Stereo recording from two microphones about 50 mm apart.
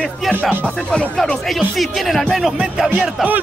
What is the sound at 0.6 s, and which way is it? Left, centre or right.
Speech, left.